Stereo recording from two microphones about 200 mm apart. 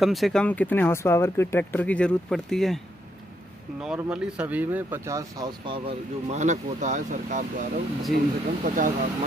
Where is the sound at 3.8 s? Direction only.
5° right (ahead or behind); by 5.8 s 20° right (ahead or behind).